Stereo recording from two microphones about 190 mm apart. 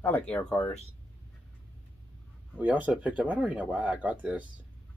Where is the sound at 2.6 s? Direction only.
10° right (ahead or behind).